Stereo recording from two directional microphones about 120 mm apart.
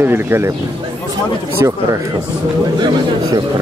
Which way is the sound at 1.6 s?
25° right (ahead or behind).